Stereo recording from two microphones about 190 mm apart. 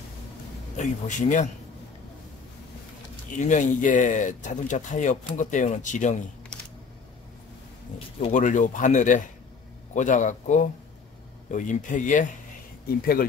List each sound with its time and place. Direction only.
0.7 s speech: 40° left (ahead or behind)
3.3 s speech: 40° left (ahead or behind)
6.5 s a sound: 5° left (ahead or behind)
8.2 s speech: 40° left (ahead or behind)